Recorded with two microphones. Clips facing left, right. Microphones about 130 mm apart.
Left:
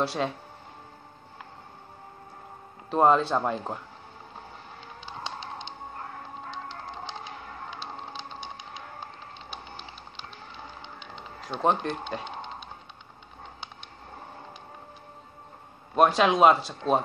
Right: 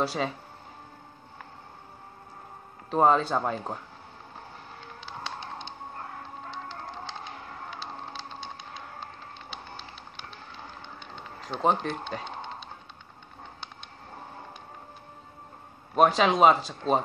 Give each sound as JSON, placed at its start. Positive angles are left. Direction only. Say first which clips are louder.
{"t": 0.0, "sound": "speech", "louder": "left 1 dB", "side_deg": 0}
{"t": 2.9, "sound": "speech", "louder": "left 1 dB", "side_deg": 0}
{"t": 5.0, "sound": "a sound", "louder": "left 1 dB", "side_deg": 15}
{"t": 7.8, "sound": "a sound", "louder": "even", "side_deg": 15}
{"t": 11.4, "sound": "speech", "louder": "even", "side_deg": 0}
{"t": 15.9, "sound": "speech", "louder": "even", "side_deg": 0}